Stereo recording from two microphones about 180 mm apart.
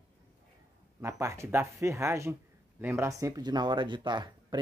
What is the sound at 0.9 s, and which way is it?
Speech, 15° right (ahead or behind).